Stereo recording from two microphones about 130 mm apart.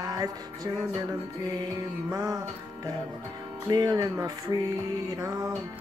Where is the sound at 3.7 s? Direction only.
30° right (ahead or behind).